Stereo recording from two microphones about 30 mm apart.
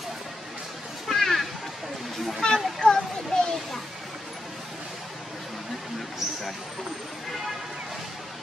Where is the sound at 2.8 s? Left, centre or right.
Left.